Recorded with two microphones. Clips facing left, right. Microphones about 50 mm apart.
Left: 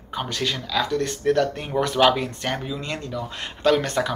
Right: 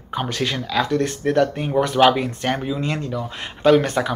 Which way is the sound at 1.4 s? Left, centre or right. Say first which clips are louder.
Right 4 dB; centre.